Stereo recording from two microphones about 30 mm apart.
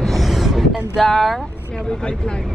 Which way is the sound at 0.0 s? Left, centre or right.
Centre.